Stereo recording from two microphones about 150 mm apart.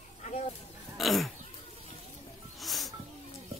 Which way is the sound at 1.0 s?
Centre (ahead or behind).